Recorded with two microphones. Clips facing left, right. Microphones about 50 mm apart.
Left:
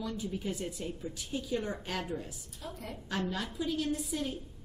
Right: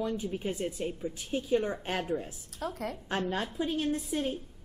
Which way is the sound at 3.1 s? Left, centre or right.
Right.